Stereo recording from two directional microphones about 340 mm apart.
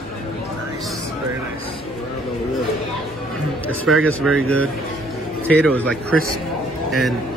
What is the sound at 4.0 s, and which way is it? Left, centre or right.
Speech, right.